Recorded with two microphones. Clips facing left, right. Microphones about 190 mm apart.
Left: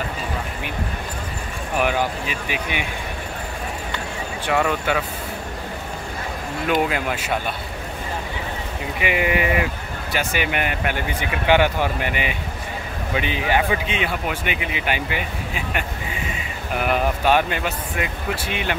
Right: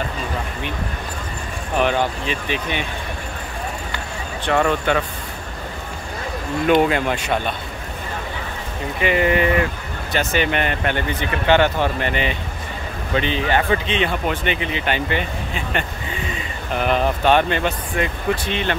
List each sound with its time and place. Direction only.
1.8 s speech: 10° left (ahead or behind)
4.5 s speech: 5° left (ahead or behind)
6.9 s speech: 5° left (ahead or behind)
9.0 s speech: 10° left (ahead or behind)